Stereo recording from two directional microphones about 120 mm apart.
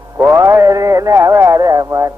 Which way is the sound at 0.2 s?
25° right (ahead or behind).